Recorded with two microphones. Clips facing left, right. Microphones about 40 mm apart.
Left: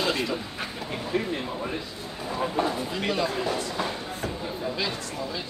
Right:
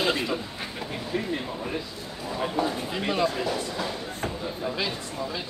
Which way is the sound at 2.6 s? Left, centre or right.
Left.